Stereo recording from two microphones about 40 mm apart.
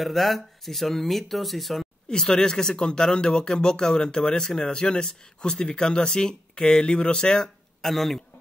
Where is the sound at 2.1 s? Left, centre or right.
Centre.